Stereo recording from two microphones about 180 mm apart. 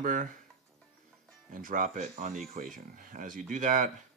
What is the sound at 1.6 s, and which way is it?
Speech, 50° right (ahead or behind).